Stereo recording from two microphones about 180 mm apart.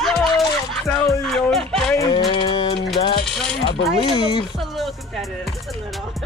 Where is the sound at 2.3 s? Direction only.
25° left (ahead or behind).